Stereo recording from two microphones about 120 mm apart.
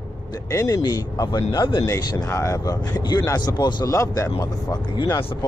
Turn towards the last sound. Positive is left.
turn(degrees=35)  # may be behind; listen again after turning